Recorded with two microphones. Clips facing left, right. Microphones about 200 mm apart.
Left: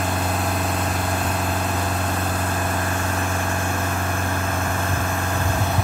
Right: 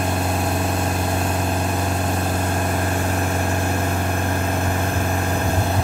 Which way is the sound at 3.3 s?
30° right (ahead or behind).